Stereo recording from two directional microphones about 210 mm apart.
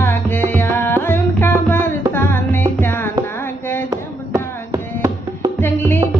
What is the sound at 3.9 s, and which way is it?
Music, 15° right (ahead or behind).